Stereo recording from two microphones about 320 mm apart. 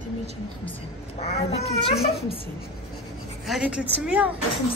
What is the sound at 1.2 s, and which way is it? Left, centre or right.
Speech, centre.